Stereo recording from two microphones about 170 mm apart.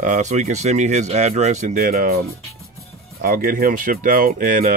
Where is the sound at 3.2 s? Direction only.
55° right (ahead or behind).